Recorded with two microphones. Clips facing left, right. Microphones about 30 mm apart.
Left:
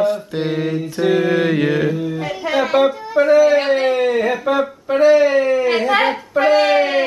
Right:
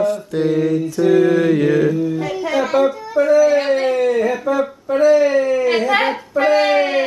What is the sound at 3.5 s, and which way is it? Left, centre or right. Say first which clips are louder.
Mantra: left 1 dB; centre.